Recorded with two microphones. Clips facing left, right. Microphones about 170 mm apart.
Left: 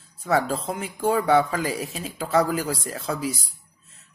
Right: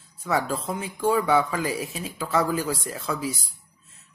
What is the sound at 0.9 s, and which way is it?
Speech, 35° left (ahead or behind).